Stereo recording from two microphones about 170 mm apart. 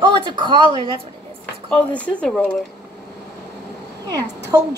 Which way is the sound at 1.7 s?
5° left (ahead or behind).